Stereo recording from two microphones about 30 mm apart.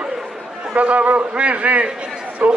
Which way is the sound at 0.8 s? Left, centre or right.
Right.